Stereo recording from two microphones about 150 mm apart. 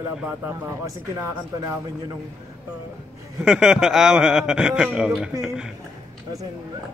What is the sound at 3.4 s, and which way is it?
A man's voice, 5° right (ahead or behind).